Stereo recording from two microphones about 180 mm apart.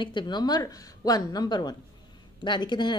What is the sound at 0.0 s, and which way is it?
A woman's voice, 25° left (ahead or behind).